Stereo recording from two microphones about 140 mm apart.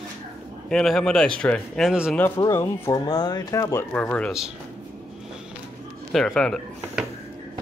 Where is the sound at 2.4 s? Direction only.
20° left (ahead or behind).